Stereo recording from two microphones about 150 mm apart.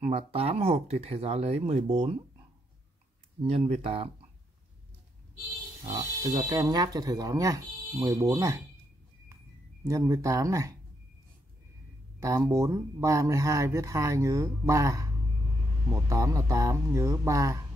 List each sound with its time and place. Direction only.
0.0 s speech: 40° right (ahead or behind)
3.3 s speech: 40° right (ahead or behind)
6.3 s speech: 25° right (ahead or behind)
9.8 s speech: 20° right (ahead or behind)
12.2 s speech: 20° right (ahead or behind)